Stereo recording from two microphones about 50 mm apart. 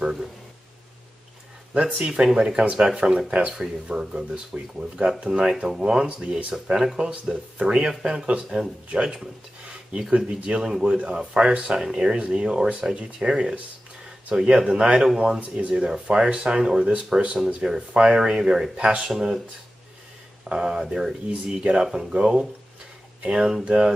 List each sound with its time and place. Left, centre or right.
0.0 s speech: centre
1.7 s speech: right
2.0 s speech: centre
7.6 s speech: centre
13.3 s speech: centre
18.8 s speech: right
19.0 s speech: centre
20.4 s speech: centre